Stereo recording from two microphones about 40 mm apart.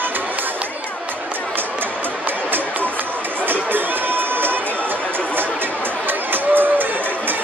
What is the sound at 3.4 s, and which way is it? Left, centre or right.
Music, right.